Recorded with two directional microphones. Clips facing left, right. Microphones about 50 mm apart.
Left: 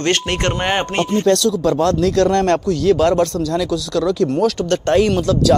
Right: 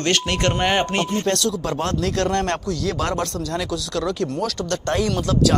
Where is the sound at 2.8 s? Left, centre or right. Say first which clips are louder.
Left 13 dB; right.